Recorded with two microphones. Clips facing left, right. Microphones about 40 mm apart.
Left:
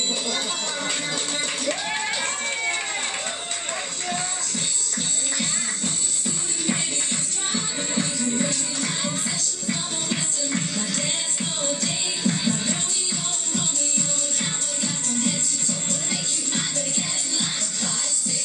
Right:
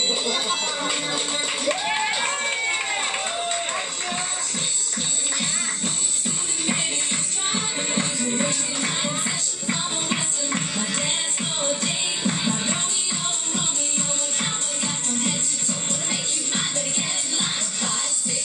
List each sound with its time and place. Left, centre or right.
0.1 s music: right